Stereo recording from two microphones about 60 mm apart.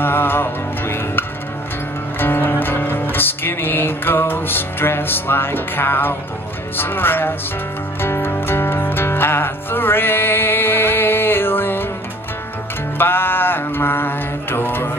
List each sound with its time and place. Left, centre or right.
0.0 s music: left
6.8 s speech: left
8.0 s music: left
12.9 s music: left